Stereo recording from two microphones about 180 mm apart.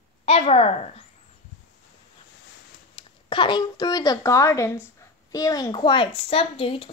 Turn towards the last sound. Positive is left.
turn(degrees=30)  # may be behind; listen again after turning